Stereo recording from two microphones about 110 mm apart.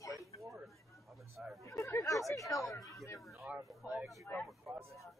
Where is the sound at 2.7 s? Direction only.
30° left (ahead or behind).